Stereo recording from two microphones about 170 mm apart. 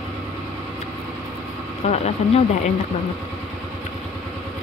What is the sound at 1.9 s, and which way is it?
Speech, 40° left (ahead or behind).